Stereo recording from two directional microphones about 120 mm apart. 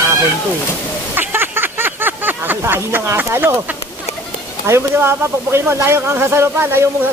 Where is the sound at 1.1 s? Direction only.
15° right (ahead or behind).